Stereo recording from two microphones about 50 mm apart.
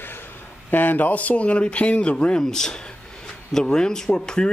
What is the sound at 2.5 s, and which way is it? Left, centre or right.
Speech, centre.